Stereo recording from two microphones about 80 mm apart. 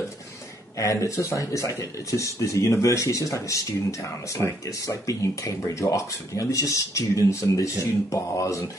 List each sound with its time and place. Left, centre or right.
0.7 s speech: left
4.3 s speech: left
4.6 s speech: left